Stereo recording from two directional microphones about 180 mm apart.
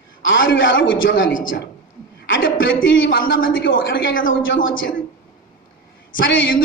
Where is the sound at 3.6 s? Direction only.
90° left.